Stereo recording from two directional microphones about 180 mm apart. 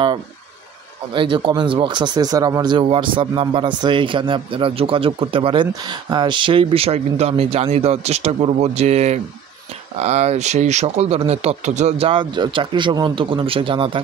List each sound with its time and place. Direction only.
1.1 s speech: 25° right (ahead or behind)